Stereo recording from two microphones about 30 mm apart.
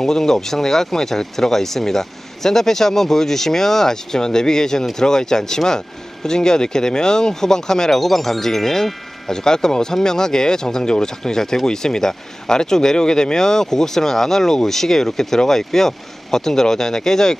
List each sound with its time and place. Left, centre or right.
0.0 s speech: centre
8.0 s speech: centre